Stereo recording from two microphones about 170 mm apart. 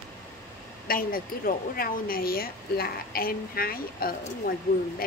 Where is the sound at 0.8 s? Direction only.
55° left (ahead or behind).